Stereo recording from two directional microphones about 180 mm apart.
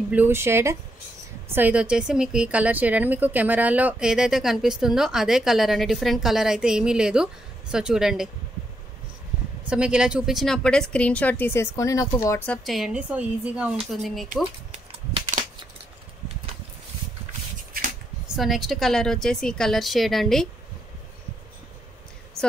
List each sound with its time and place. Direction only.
0.1 s a woman's voice: 10° right (ahead or behind)
9.7 s a woman's voice: 5° right (ahead or behind); by 12.1 s 20° left (ahead or behind)
12.4 s a woman's voice: centre (ahead or behind)
14.7 s a sound: 40° right (ahead or behind)
18.3 s a woman's voice: centre (ahead or behind)